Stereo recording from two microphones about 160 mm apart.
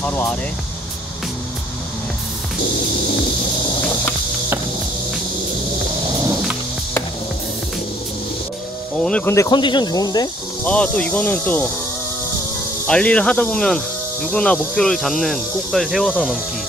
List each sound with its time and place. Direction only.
0.0 s speech: 10° left (ahead or behind)
9.0 s speech: 5° left (ahead or behind)
9.3 s speech: 25° left (ahead or behind)
10.6 s speech: 10° left (ahead or behind)
12.8 s speech: 5° left (ahead or behind)